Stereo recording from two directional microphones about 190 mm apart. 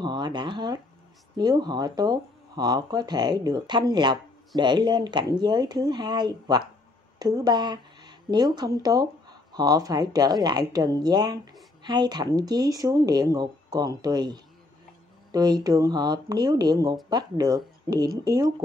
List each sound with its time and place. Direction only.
0.0 s speech: 25° right (ahead or behind)